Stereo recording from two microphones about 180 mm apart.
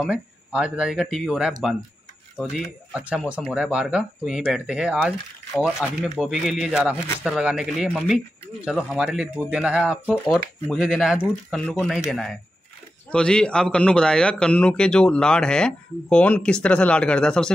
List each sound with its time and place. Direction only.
0.0 s speech: 5° right (ahead or behind)
2.5 s speech: 5° right (ahead or behind)